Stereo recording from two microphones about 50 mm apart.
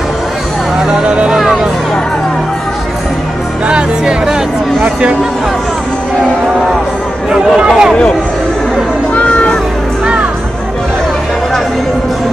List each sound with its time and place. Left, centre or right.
0.8 s speech: centre
1.4 s music: centre
3.6 s music: centre
7.2 s speech: centre
9.1 s music: left